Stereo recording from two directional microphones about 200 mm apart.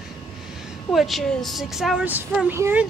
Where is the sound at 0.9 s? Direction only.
Centre (ahead or behind).